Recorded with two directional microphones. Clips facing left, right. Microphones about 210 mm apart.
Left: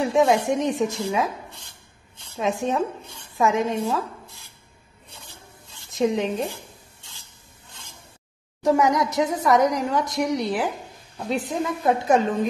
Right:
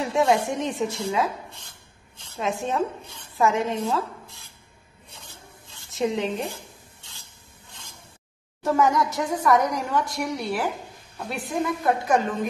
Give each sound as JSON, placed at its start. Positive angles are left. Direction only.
{"t": 0.0, "sound": "a woman's voice", "side_deg": 20}
{"t": 2.3, "sound": "a woman's voice", "side_deg": 15}
{"t": 5.9, "sound": "a woman's voice", "side_deg": 15}
{"t": 8.6, "sound": "a woman's voice", "side_deg": 15}